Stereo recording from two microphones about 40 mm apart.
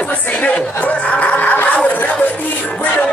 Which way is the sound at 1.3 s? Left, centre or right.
Left.